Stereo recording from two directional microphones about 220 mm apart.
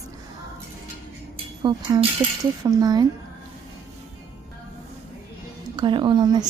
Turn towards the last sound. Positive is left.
turn(degrees=-20)  # may be behind; listen again after turning